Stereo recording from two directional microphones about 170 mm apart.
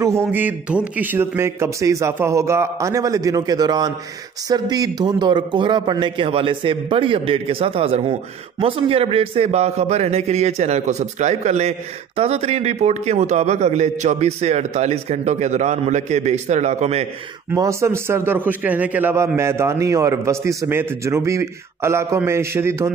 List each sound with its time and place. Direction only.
0.0 s a man's voice: 15° right (ahead or behind); by 17.0 s 40° right (ahead or behind)
17.5 s a man's voice: 15° right (ahead or behind)